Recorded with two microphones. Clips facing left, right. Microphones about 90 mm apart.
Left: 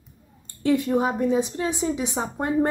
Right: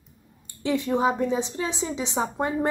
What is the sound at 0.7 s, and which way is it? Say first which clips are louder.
A woman's voice: left 2 dB; 20° right (ahead or behind).